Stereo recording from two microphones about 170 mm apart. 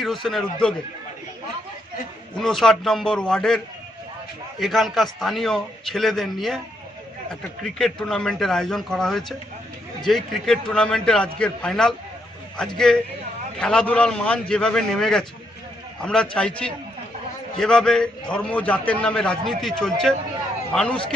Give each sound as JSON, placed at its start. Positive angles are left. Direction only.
{"t": 0.0, "sound": "a man's voice", "side_deg": 0}
{"t": 2.3, "sound": "a man's voice", "side_deg": 5}
{"t": 7.6, "sound": "a man's voice", "side_deg": 5}